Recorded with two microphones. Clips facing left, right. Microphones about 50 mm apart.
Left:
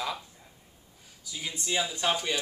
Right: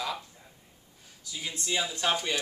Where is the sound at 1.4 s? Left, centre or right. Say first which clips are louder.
Left 1 dB; centre.